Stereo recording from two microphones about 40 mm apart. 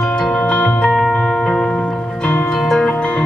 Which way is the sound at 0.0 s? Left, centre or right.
Centre.